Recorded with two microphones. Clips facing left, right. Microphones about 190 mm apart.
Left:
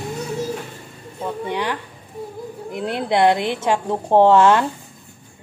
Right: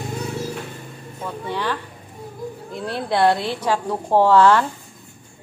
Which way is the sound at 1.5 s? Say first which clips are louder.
Left 1 dB; 20° left (ahead or behind).